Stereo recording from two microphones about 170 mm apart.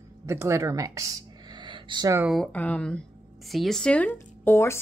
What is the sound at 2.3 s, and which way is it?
Speech, 5° left (ahead or behind).